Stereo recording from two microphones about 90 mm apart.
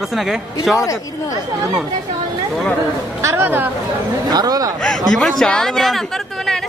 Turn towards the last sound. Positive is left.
turn(degrees=5)  # may be behind; listen again after turning